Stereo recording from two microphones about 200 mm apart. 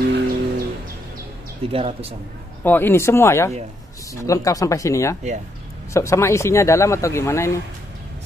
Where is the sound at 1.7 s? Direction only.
30° right (ahead or behind).